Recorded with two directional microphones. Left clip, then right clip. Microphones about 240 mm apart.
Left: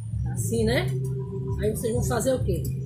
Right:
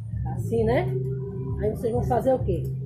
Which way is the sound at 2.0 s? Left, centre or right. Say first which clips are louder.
Right 4 dB; centre.